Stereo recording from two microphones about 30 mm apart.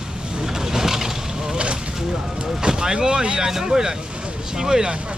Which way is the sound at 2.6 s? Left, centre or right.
Right.